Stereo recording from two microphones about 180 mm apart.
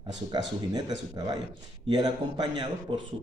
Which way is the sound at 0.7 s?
20° right (ahead or behind).